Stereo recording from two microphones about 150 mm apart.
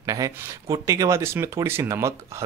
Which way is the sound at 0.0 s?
25° right (ahead or behind).